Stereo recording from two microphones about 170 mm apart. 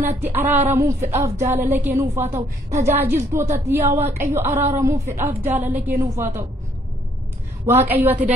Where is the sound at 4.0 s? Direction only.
45° right (ahead or behind).